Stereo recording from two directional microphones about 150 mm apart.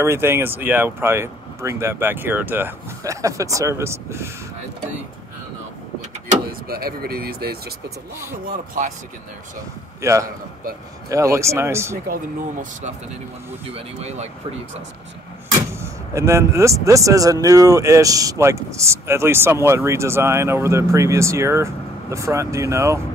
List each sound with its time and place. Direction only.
0.0 s speech: 15° right (ahead or behind)
6.7 s speech: 90° right
10.0 s speech: 20° right (ahead or behind)
13.7 s speech: 40° right (ahead or behind)
16.2 s speech: 20° right (ahead or behind)